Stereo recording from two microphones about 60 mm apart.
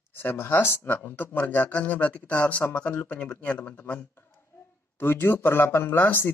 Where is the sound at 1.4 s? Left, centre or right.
Left.